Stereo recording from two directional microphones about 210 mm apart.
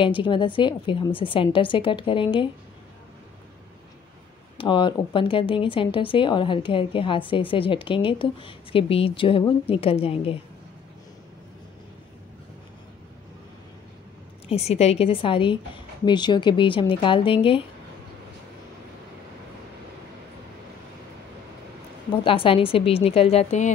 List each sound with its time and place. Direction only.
0.0 s speech: 25° left (ahead or behind)
4.6 s speech: 25° left (ahead or behind)
14.5 s speech: 30° left (ahead or behind)
22.2 s speech: 25° left (ahead or behind)